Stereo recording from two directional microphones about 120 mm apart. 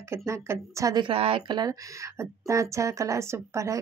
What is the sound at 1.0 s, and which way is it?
Speech, 50° right (ahead or behind).